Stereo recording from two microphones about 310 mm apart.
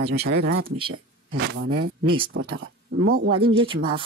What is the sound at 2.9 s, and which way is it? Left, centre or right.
Speech, right.